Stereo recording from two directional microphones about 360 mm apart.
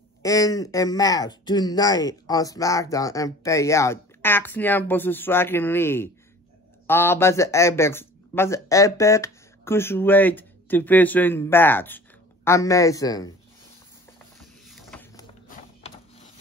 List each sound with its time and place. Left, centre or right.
0.2 s speech: centre
14.4 s printer: centre
15.4 s mechanisms: left